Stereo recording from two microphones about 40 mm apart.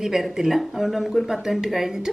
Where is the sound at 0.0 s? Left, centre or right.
Centre.